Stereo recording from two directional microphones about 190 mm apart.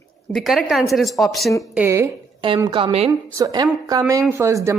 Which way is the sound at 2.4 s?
25° right (ahead or behind).